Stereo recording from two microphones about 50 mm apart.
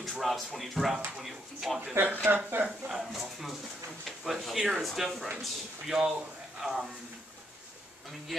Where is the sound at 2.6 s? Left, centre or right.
Centre.